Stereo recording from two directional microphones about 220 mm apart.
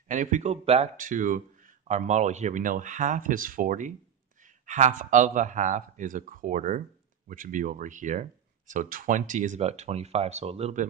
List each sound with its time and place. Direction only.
0.1 s speech: 35° right (ahead or behind)